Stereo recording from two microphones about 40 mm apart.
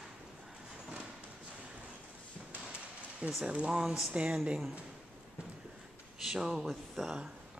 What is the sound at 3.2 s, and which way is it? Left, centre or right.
Speech, right.